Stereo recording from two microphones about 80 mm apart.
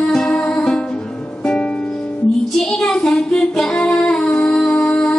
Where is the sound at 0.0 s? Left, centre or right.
Centre.